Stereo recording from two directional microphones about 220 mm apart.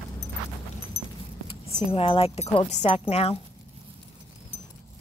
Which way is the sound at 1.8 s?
25° left (ahead or behind).